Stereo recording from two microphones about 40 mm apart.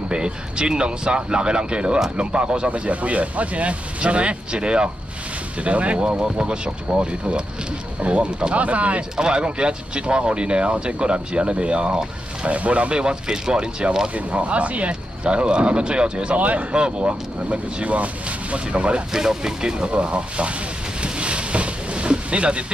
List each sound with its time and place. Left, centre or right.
0.1 s speech: right
9.1 s speech: right
12.4 s speech: right
14.1 s speech: right
16.3 s speech: right
19.1 s speech: centre
21.0 s boat: right